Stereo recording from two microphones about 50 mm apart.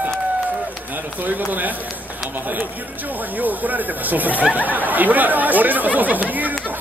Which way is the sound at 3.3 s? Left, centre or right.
Right.